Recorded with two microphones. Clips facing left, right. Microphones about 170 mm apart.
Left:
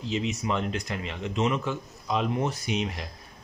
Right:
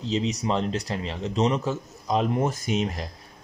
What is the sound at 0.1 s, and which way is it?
Speech, 35° right (ahead or behind).